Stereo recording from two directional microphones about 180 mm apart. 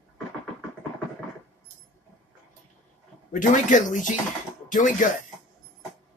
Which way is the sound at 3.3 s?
45° left (ahead or behind).